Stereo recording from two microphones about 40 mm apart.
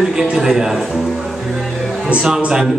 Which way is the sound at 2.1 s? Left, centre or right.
Centre.